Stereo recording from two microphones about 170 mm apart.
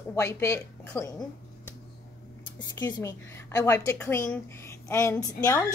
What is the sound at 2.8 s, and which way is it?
A woman's voice, 20° left (ahead or behind).